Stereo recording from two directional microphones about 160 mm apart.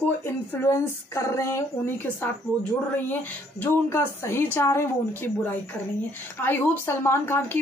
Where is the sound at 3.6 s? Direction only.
15° left (ahead or behind).